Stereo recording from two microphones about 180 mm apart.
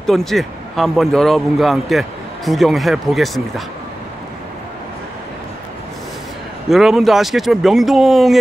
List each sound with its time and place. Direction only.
0.0 s speech: centre (ahead or behind)
6.7 s speech: centre (ahead or behind)